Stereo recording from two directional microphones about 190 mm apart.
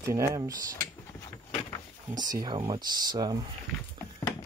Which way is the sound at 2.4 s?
25° right (ahead or behind).